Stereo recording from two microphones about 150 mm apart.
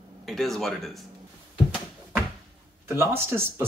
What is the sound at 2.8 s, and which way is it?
Speech, 15° right (ahead or behind).